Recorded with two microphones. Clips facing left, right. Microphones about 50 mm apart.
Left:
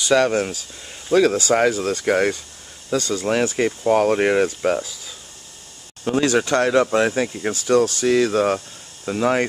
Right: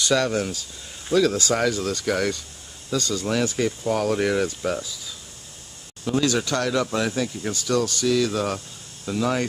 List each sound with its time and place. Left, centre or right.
0.1 s speech: left
6.0 s speech: left